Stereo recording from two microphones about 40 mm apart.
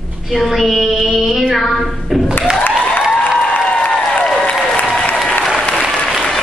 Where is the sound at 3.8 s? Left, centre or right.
Left.